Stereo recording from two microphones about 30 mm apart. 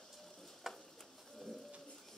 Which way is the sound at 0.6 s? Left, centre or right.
Centre.